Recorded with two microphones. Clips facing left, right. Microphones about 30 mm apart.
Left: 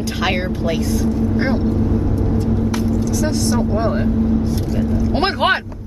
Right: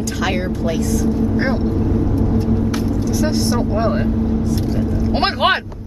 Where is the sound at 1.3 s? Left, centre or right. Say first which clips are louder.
Even; centre.